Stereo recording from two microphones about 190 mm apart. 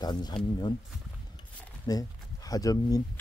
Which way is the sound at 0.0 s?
20° left (ahead or behind).